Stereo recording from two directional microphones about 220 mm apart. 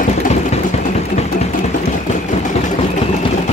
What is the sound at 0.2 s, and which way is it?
Vehicle, 30° left (ahead or behind).